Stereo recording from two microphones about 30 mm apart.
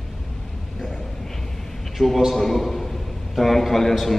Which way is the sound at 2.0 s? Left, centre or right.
Centre.